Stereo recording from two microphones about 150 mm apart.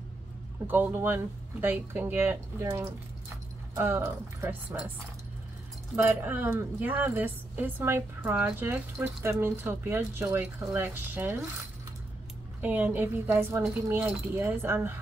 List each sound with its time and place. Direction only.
0.7 s a woman's voice: 15° right (ahead or behind)
5.9 s a woman's voice: 15° right (ahead or behind)
12.6 s a woman's voice: 10° right (ahead or behind)